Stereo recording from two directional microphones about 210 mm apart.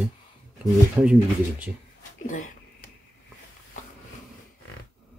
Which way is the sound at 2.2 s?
40° left (ahead or behind).